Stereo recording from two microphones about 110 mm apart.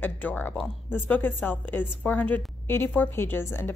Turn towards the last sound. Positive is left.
turn(degrees=20)  # may be behind; listen again after turning